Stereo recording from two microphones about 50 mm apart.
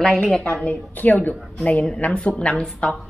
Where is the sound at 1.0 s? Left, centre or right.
Left.